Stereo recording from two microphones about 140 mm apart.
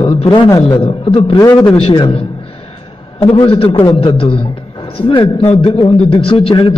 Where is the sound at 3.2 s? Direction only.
40° left (ahead or behind).